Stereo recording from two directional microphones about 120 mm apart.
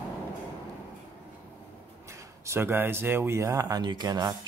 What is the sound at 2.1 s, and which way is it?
Speech, 25° right (ahead or behind).